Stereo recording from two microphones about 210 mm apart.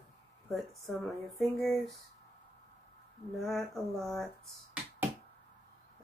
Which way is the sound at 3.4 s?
Centre (ahead or behind).